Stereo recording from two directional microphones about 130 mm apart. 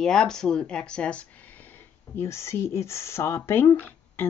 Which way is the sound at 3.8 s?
15° left (ahead or behind).